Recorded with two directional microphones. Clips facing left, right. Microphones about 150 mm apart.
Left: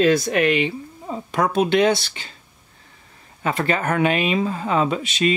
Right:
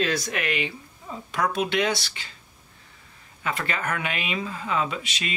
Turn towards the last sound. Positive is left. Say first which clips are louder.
# left 11 dB
turn(degrees=35)  # may be behind; listen again after turning